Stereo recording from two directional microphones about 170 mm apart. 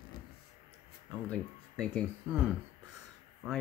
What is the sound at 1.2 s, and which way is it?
Speech, 5° left (ahead or behind).